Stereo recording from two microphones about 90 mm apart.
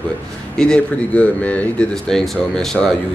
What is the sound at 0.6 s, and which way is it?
Speech, 10° left (ahead or behind).